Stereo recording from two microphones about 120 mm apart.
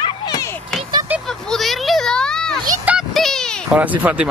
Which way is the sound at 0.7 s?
5° left (ahead or behind).